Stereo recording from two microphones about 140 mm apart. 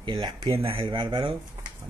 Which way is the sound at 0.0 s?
30° right (ahead or behind).